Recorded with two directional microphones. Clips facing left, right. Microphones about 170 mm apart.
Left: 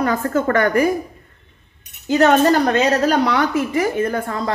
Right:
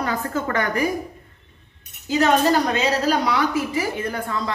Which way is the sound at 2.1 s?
60° left (ahead or behind).